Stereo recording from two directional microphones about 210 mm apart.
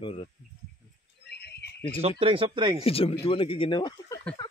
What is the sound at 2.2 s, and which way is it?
Speech, 25° right (ahead or behind).